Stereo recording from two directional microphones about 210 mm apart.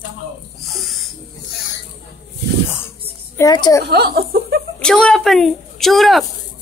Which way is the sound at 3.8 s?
50° right (ahead or behind).